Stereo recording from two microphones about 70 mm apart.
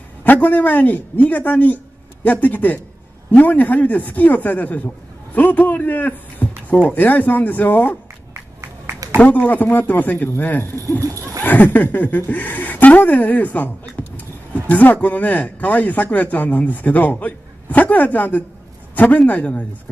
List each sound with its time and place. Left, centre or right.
0.2 s a man's voice: left
9.2 s a man's voice: left
14.7 s a man's voice: left